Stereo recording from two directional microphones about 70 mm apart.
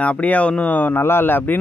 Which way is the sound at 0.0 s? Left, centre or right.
Centre.